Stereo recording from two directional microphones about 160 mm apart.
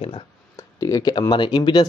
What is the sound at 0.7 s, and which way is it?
Speech, 20° left (ahead or behind).